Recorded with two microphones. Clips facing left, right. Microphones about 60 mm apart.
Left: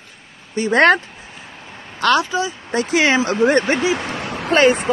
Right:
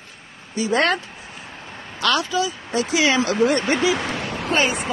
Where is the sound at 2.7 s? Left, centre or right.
Left.